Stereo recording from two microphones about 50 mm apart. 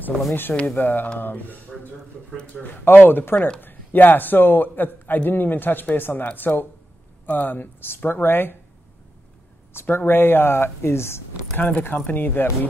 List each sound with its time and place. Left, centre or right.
0.3 s a man's voice: left
3.0 s a man's voice: left
9.8 s speech: left
11.5 s a man's voice: left